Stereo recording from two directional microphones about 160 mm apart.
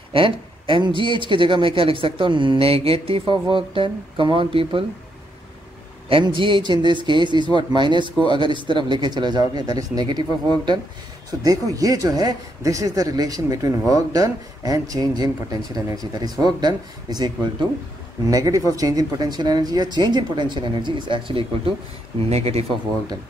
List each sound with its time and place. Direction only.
0.1 s speech: 30° right (ahead or behind)
6.0 s speech: 35° right (ahead or behind)